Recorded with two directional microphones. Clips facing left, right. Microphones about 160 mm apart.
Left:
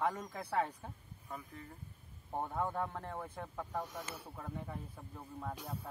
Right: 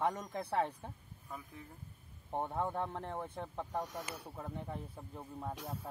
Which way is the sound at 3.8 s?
Centre (ahead or behind).